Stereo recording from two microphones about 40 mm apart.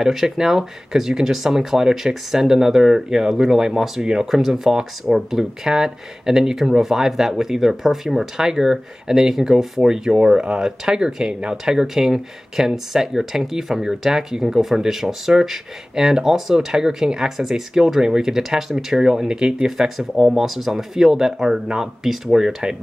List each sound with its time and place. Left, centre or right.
0.0 s speech: centre